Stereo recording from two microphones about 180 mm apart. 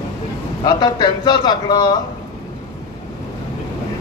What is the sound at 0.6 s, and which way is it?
A man's voice, 25° left (ahead or behind).